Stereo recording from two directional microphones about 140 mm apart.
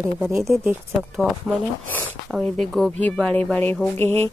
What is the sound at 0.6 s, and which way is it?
Speech, 15° right (ahead or behind).